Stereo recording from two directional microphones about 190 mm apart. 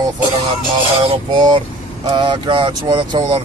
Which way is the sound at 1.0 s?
25° right (ahead or behind).